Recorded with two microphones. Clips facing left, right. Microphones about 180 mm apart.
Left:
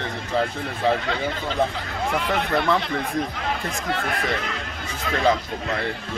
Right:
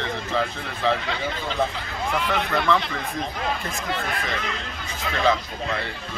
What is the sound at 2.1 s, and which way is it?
Speech, 45° left (ahead or behind).